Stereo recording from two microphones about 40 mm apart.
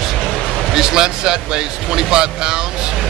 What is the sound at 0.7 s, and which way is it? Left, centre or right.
Speech, centre.